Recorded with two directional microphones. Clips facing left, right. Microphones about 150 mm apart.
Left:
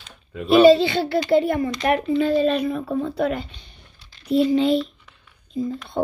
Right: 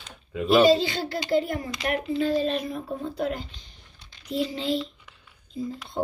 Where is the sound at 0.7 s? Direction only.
65° left (ahead or behind).